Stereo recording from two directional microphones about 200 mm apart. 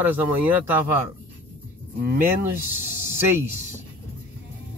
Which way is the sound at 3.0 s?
10° right (ahead or behind).